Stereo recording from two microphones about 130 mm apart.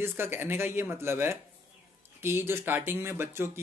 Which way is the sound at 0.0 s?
15° right (ahead or behind).